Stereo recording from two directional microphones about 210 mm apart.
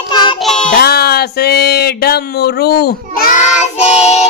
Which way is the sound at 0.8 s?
50° left (ahead or behind).